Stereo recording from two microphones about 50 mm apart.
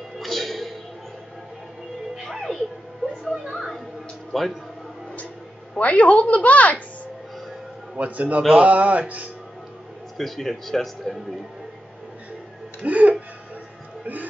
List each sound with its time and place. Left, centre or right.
0.2 s music: centre
2.2 s a sound: centre
3.3 s music: centre
4.3 s a man's voice: centre
5.8 s a woman's voice: left
8.0 s speech: right
10.1 s speech: centre
12.8 s speech: right